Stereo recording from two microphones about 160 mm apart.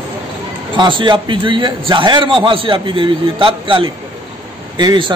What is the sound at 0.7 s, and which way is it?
A man's voice, 30° right (ahead or behind).